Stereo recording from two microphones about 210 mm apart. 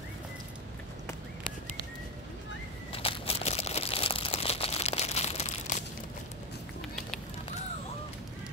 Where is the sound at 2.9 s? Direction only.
25° left (ahead or behind).